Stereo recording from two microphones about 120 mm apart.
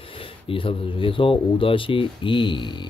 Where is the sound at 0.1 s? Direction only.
50° left (ahead or behind).